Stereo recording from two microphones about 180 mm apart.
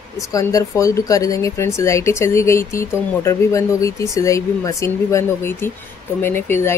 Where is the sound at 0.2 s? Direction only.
20° left (ahead or behind).